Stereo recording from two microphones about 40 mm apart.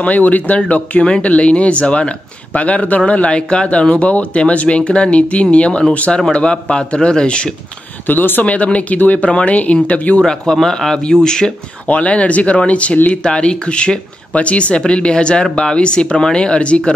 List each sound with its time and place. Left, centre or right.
0.0 s speech: left
1.0 s speech: left
3.9 s speech: left
5.9 s speech: left
6.9 s speech: left
8.1 s speech: left
8.5 s speech: left
10.2 s speech: centre
11.9 s speech: left